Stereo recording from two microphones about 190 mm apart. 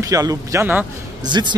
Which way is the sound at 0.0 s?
20° right (ahead or behind).